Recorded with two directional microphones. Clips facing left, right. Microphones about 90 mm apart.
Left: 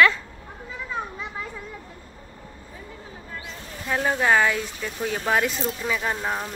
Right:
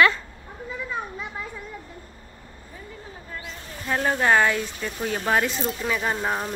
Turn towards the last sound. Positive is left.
turn(degrees=-10)  # may be behind; listen again after turning